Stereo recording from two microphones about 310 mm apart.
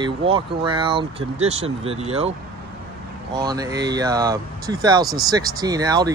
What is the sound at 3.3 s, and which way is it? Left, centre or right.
Speech, centre.